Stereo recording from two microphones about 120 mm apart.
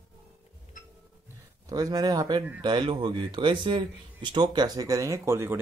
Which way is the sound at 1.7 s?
30° right (ahead or behind).